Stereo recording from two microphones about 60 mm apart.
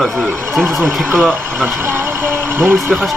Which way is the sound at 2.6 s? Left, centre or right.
Right.